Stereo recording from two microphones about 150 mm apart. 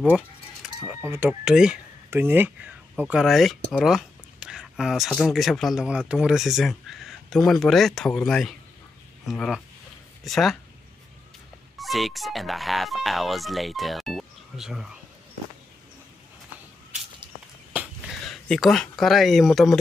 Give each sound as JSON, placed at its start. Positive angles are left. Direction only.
{"t": 0.1, "sound": "a sound", "side_deg": -5}
{"t": 1.0, "sound": "speech", "side_deg": -15}
{"t": 1.4, "sound": "speech", "side_deg": -5}
{"t": 11.8, "sound": "speech", "side_deg": 0}
{"t": 17.7, "sound": "speech", "side_deg": 0}